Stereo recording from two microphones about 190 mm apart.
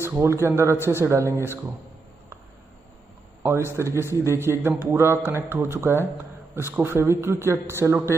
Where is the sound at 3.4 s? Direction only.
10° right (ahead or behind).